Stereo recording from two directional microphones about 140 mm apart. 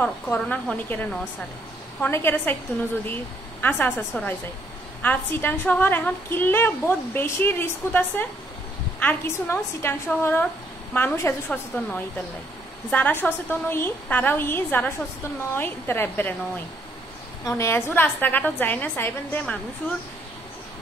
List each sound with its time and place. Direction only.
0.0 s a woman's voice: 10° left (ahead or behind)
3.6 s a woman's voice: 10° left (ahead or behind)